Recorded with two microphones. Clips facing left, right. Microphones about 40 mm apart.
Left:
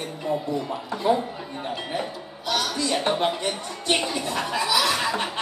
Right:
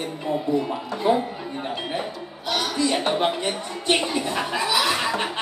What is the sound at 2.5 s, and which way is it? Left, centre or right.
A woman's voice, centre.